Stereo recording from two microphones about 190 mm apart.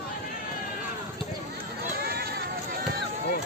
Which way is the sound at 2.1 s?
55° right (ahead or behind).